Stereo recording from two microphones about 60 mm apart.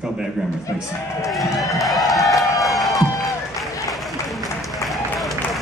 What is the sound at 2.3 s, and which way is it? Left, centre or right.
Crowd, left.